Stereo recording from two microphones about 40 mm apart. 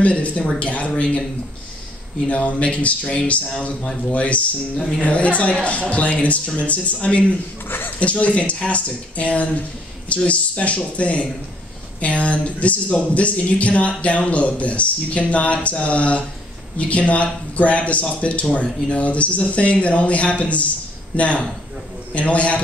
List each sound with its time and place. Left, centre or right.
0.0 s speech: left
2.2 s speech: left
4.1 s speech: left
7.6 s a sound: left
8.0 s speech: left